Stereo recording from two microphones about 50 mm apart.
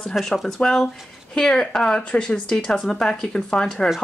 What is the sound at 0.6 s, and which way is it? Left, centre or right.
A woman's voice, left.